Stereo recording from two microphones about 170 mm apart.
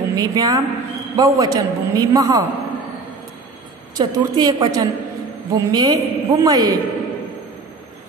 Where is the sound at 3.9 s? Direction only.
25° right (ahead or behind).